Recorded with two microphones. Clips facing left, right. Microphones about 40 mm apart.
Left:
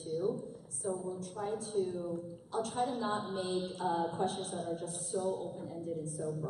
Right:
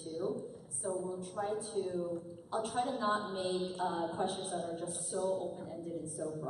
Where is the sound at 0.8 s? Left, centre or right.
Centre.